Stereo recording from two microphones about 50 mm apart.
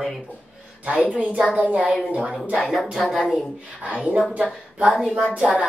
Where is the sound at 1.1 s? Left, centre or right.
Right.